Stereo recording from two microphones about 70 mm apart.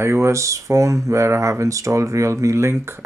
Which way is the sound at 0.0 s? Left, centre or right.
Right.